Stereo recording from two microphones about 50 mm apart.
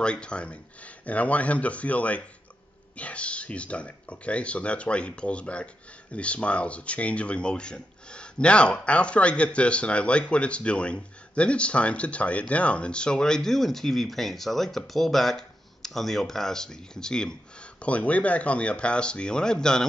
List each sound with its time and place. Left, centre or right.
0.0 s speech: centre
17.7 s speech: left